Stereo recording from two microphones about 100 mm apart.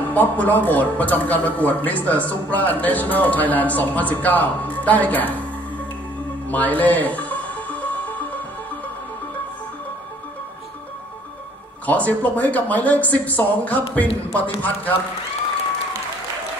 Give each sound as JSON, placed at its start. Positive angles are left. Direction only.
{"t": 0.1, "sound": "a man's voice", "side_deg": 15}
{"t": 6.5, "sound": "music", "side_deg": 15}
{"t": 11.8, "sound": "a man's voice", "side_deg": 15}